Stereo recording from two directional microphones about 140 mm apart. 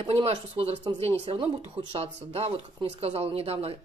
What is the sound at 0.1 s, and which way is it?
Speech, 45° right (ahead or behind).